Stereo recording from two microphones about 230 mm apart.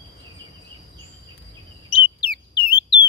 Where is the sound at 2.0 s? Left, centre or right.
Left.